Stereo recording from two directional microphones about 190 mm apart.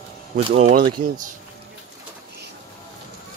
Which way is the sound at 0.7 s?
45° right (ahead or behind).